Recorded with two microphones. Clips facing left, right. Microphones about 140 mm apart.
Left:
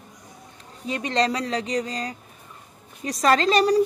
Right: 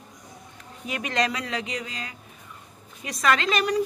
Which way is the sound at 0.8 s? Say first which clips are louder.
Left 3 dB; 30° left (ahead or behind).